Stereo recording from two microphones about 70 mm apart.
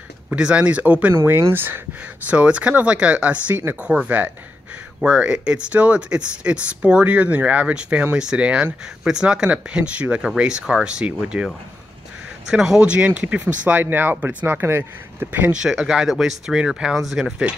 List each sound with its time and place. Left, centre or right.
0.3 s speech: centre
1.1 s speech: right
2.2 s speech: centre
12.4 s speech: centre; by 15.5 s right
15.5 s speech: centre